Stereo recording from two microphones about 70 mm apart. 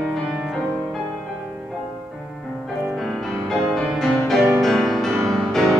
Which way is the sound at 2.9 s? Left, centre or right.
Centre.